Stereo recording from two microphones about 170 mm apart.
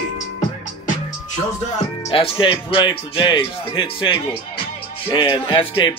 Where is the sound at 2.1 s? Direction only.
30° left (ahead or behind).